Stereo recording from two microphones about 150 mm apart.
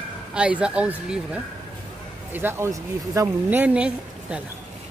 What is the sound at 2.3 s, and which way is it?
Speech, 15° right (ahead or behind).